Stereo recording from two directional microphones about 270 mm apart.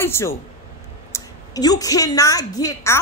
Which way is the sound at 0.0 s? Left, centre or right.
Centre.